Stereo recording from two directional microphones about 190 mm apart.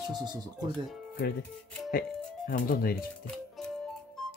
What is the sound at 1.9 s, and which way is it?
Speech, 50° left (ahead or behind).